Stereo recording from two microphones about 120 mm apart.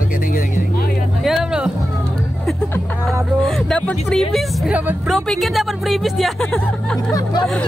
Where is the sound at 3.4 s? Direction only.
5° left (ahead or behind).